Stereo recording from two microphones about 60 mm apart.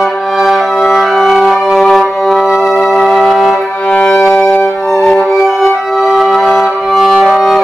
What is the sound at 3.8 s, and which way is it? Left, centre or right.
Music, left.